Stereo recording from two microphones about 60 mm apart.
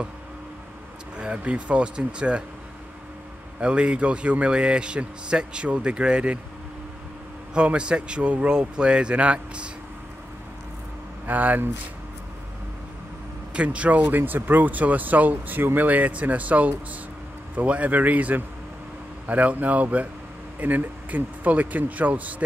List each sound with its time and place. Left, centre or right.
1.1 s speech: centre
3.6 s speech: centre
7.5 s speech: centre
11.2 s speech: right
13.5 s speech: centre